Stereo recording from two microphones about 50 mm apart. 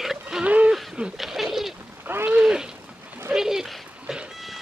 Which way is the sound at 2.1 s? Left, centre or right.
Right.